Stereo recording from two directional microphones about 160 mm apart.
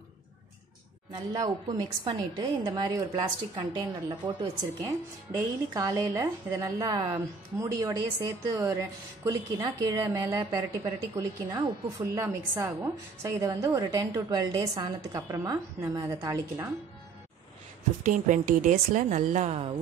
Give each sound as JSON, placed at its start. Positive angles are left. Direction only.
{"t": 1.1, "sound": "a woman's voice", "side_deg": -25}
{"t": 18.0, "sound": "a woman's voice", "side_deg": -55}